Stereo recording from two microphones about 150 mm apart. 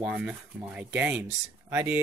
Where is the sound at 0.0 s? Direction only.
5° right (ahead or behind).